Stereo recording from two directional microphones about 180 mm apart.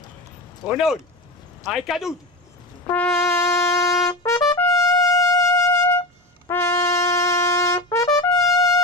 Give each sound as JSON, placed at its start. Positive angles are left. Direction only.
{"t": 0.7, "sound": "speech", "side_deg": 0}
{"t": 2.9, "sound": "trumpet", "side_deg": 10}